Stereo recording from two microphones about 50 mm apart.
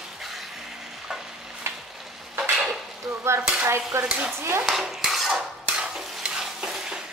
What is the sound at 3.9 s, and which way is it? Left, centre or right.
Stir, right.